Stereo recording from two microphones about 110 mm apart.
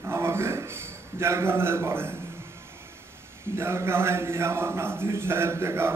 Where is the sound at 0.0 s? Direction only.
25° right (ahead or behind).